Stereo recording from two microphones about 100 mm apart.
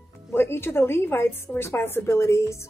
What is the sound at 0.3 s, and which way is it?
A woman's voice, 25° left (ahead or behind).